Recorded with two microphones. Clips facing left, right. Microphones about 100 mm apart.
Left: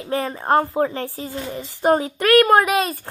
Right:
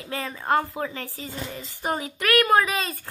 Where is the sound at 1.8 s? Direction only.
55° left (ahead or behind).